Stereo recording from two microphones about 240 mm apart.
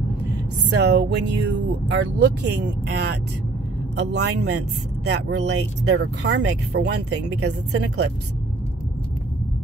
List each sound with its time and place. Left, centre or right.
0.7 s speech: right